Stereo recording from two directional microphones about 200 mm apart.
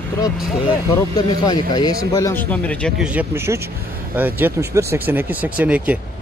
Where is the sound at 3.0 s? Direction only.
5° right (ahead or behind).